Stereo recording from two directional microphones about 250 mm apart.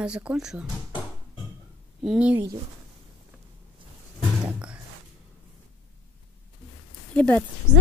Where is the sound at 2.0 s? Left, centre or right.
Centre.